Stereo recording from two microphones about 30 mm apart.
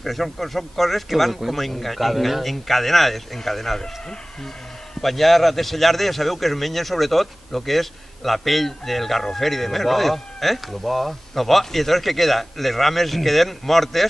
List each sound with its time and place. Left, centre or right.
0.0 s a man's voice: centre
3.8 s speech: centre
5.0 s a man's voice: centre